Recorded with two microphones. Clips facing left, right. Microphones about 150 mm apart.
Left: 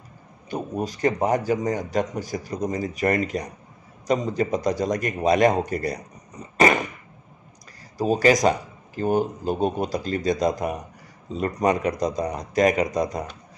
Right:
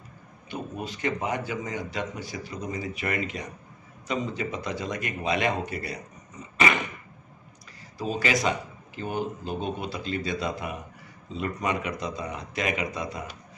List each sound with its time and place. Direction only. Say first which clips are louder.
0.5 s a man's voice: left 6 dB; 40° left (ahead or behind)
6.5 s a sound: left 6 dB; 40° left (ahead or behind)
8.0 s a man's voice: left 8 dB; 40° left (ahead or behind)